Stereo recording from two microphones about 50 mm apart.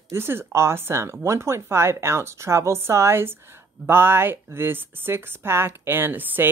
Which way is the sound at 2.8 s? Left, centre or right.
Right.